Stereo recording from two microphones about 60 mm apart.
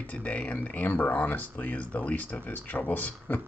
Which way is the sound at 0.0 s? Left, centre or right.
Left.